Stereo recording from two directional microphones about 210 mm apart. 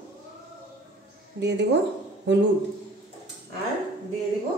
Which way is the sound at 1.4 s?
55° right (ahead or behind).